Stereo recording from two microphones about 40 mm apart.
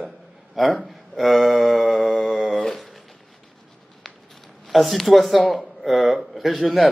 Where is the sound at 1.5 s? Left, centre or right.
Centre.